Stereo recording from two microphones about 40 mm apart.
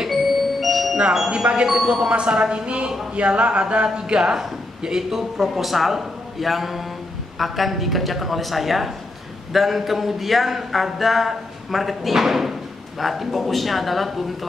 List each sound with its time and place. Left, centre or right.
0.1 s music: centre
1.3 s a man's voice: right; by 6.8 s centre
7.3 s a sound: centre